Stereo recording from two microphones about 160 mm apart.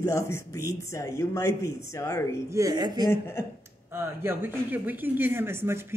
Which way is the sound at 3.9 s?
15° right (ahead or behind).